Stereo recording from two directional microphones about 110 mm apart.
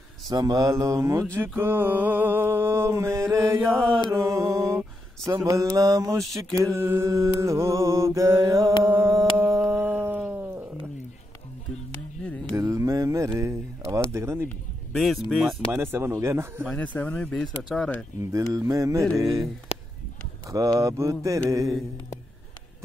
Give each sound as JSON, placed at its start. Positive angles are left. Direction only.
{"t": 0.3, "sound": "mantra", "side_deg": -35}
{"t": 8.8, "sound": "a sound", "side_deg": -25}
{"t": 12.5, "sound": "a sound", "side_deg": -30}
{"t": 14.1, "sound": "mantra", "side_deg": -25}
{"t": 14.9, "sound": "speech", "side_deg": 0}
{"t": 15.7, "sound": "mantra", "side_deg": -20}
{"t": 16.6, "sound": "speech", "side_deg": 10}
{"t": 18.3, "sound": "mantra", "side_deg": -30}
{"t": 20.5, "sound": "mantra", "side_deg": -30}